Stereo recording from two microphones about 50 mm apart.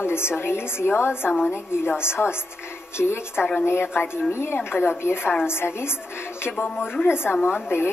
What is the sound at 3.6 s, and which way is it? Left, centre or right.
A woman's voice, left.